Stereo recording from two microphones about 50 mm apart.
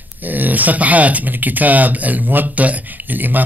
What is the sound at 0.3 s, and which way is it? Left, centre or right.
Speech, right.